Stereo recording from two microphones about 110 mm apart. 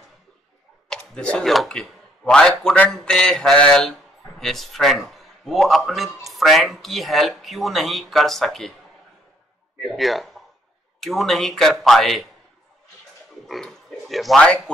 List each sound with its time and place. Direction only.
0.8 s speech: 10° left (ahead or behind)
9.9 s speech: centre (ahead or behind)
13.5 s oink: centre (ahead or behind)